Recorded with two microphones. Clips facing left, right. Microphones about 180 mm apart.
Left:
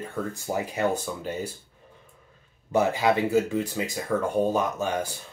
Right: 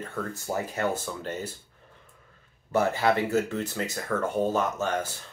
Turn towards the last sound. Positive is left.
turn(degrees=10)  # may be behind; listen again after turning